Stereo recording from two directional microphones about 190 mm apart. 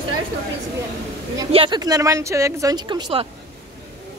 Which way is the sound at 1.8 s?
15° right (ahead or behind).